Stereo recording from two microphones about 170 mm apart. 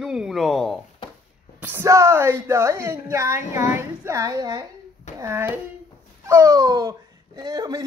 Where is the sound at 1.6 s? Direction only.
15° right (ahead or behind).